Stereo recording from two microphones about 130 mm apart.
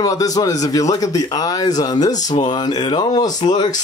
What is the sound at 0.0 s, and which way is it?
Speech, 30° left (ahead or behind).